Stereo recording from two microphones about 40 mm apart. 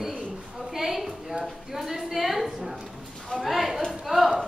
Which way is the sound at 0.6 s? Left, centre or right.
Centre.